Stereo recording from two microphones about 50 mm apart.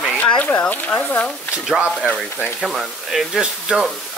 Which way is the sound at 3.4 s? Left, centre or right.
Centre.